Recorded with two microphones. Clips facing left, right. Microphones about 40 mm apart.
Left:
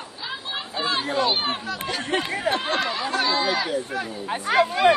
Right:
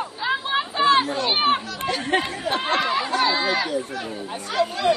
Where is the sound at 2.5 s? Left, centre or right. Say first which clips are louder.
Right 5 dB; centre.